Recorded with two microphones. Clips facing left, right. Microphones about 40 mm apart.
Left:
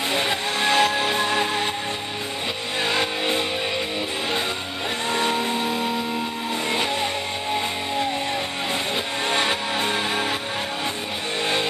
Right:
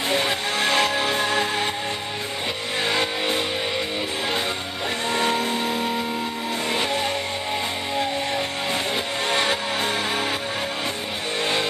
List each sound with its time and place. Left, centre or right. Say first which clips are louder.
0.1 s music: right 2 dB; centre
0.6 s music: left 2 dB; left
1.1 s music: even; centre
2.9 s vehicle: even; left
5.1 s music: even; centre
9.3 s music: even; centre